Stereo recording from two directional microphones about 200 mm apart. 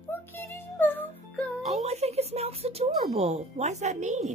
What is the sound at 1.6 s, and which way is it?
Speech, 30° right (ahead or behind).